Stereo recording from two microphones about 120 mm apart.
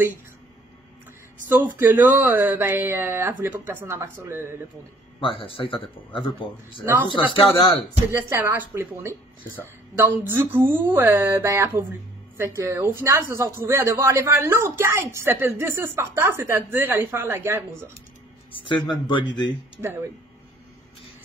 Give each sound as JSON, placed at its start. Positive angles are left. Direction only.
{"t": 1.5, "sound": "speech", "side_deg": -15}
{"t": 5.2, "sound": "speech", "side_deg": 45}
{"t": 8.3, "sound": "speech", "side_deg": -20}
{"t": 18.5, "sound": "speech", "side_deg": 45}